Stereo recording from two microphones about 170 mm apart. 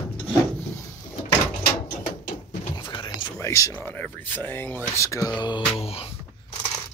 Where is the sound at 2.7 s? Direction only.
25° left (ahead or behind).